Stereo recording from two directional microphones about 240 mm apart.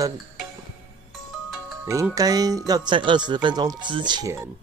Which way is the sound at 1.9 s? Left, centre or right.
Centre.